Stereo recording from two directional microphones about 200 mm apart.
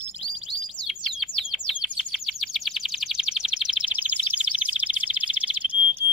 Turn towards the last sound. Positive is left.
turn(degrees=-5)  # may be behind; listen again after turning